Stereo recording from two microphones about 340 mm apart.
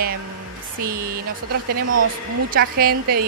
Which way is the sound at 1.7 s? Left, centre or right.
Right.